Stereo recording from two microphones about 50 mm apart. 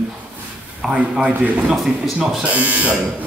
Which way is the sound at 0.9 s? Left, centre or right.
Centre.